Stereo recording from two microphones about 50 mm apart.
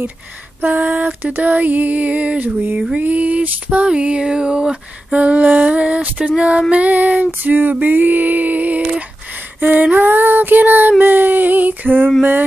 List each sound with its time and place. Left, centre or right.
0.6 s child singing: right
3.8 s a sound: right
6.7 s child singing: right